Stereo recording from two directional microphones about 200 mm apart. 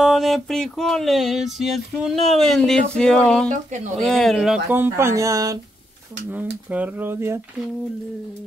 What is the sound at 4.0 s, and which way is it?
Speech, centre (ahead or behind).